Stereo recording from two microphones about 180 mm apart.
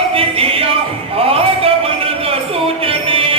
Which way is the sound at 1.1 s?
30° right (ahead or behind).